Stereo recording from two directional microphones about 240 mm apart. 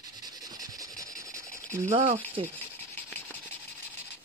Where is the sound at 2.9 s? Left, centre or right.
Centre.